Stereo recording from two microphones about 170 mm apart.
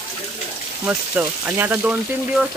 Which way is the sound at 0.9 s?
10° right (ahead or behind).